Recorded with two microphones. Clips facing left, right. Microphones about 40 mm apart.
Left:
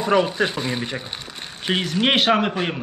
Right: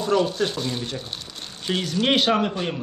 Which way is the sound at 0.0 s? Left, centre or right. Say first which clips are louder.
Left 2 dB; left.